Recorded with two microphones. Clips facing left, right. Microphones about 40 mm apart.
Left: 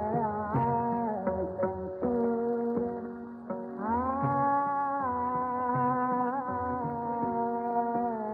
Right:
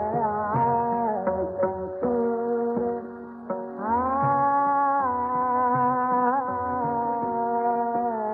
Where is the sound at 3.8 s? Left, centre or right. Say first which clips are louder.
Right 6 dB; centre.